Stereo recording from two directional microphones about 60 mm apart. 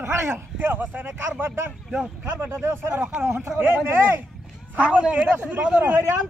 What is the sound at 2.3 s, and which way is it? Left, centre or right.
Speech, right.